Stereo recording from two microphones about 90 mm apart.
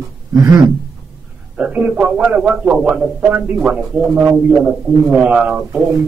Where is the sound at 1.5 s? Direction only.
15° right (ahead or behind).